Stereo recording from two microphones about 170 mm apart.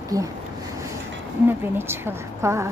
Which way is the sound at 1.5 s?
15° right (ahead or behind).